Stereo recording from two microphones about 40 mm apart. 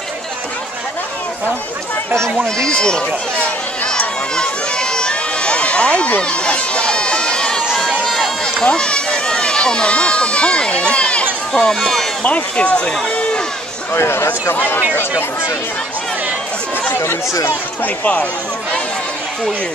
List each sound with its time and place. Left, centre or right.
2.4 s speech: centre
3.8 s crowd: left
4.4 s run: centre
6.2 s speech: left
6.5 s crowd: left
8.1 s run: centre
8.7 s speech: left
11.5 s speech: centre
12.2 s speech: left
13.9 s speech: left
15.0 s speech: left
17.8 s speech: left